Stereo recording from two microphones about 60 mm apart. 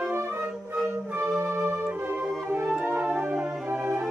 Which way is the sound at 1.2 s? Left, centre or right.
Right.